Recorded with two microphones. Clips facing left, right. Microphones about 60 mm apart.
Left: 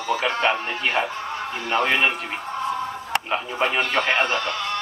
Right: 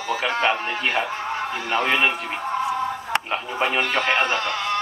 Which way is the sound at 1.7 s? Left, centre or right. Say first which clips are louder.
Even; centre.